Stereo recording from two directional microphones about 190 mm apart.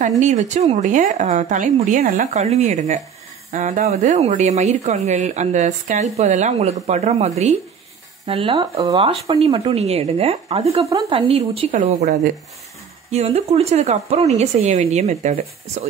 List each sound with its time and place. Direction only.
0.2 s speech: 40° right (ahead or behind)